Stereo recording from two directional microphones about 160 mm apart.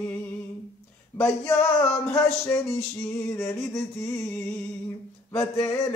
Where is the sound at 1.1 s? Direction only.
20° left (ahead or behind).